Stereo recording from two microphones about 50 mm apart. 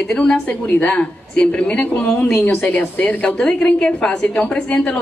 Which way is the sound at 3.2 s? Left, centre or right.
Centre.